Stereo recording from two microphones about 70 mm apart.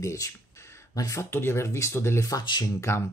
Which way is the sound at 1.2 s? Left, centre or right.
Left.